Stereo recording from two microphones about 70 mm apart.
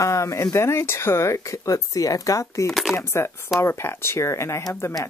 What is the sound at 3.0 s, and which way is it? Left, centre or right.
Speech, left.